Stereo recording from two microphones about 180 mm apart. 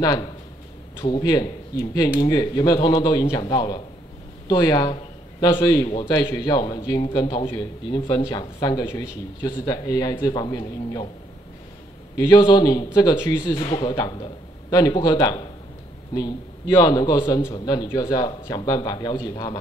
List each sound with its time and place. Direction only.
0.0 s a man's voice: 20° left (ahead or behind)
12.3 s a man's voice: 25° left (ahead or behind)